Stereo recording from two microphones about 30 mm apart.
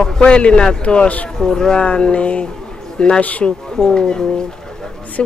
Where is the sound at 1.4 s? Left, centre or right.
Left.